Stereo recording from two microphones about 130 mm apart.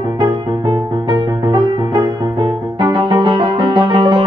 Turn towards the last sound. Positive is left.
turn(degrees=-40)  # may be behind; listen again after turning